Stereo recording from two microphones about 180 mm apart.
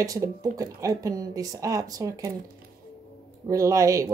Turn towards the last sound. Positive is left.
turn(degrees=-20)  # may be behind; listen again after turning